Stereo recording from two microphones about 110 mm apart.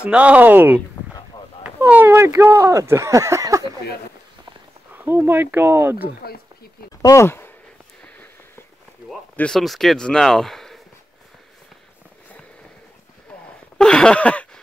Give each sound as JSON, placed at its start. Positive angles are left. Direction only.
{"t": 0.0, "sound": "speech", "side_deg": -10}
{"t": 4.9, "sound": "speech", "side_deg": -20}
{"t": 7.0, "sound": "speech", "side_deg": 30}
{"t": 8.0, "sound": "a sound", "side_deg": 15}
{"t": 9.4, "sound": "speech", "side_deg": 0}
{"t": 13.7, "sound": "a sound", "side_deg": 5}